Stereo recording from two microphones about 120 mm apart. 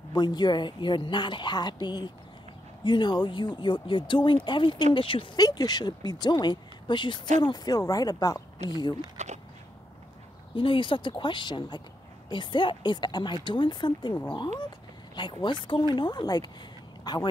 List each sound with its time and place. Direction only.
0.1 s a woman's voice: 35° left (ahead or behind)
5.4 s a woman's voice: 35° left (ahead or behind)
9.1 s a sound: 70° right (ahead or behind)
10.5 s a woman's voice: 45° left (ahead or behind)